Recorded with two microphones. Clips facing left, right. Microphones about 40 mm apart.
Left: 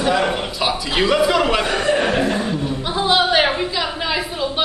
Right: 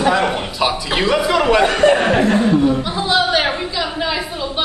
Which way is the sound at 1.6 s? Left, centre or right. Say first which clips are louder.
Right 6 dB; right.